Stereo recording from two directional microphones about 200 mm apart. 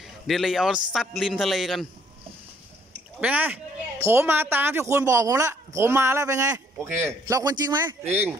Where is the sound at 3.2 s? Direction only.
10° right (ahead or behind).